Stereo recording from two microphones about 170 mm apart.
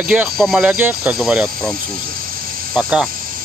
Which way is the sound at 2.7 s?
5° right (ahead or behind).